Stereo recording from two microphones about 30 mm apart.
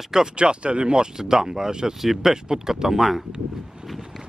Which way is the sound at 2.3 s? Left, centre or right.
Right.